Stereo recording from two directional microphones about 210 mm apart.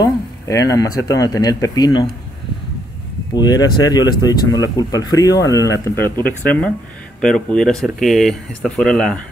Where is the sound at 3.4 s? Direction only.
20° left (ahead or behind).